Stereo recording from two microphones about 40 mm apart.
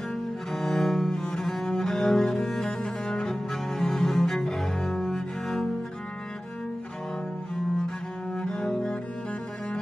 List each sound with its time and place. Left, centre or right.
0.7 s cello: centre
8.4 s cello: centre